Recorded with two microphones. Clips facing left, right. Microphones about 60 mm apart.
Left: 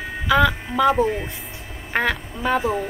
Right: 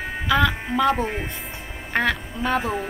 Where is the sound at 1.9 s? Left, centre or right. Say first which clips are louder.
Even; centre.